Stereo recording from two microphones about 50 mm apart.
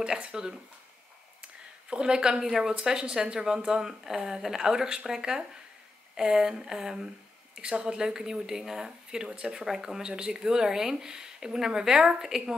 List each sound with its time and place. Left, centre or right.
0.0 s speech: centre
1.4 s a sound: centre
2.4 s speech: centre